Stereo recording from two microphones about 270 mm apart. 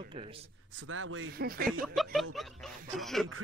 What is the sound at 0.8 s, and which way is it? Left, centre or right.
Speech, right.